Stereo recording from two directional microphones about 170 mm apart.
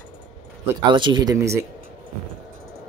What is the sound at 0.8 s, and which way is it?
Speech, 25° right (ahead or behind).